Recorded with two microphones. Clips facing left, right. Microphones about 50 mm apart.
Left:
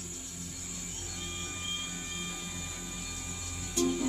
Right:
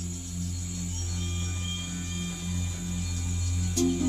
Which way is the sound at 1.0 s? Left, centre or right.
Centre.